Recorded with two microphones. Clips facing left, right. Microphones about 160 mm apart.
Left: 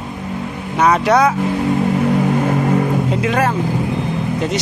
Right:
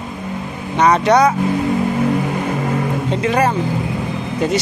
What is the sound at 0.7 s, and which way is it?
Speech, 5° left (ahead or behind).